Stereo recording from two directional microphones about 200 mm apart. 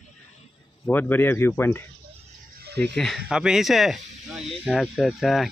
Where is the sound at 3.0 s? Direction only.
Centre (ahead or behind).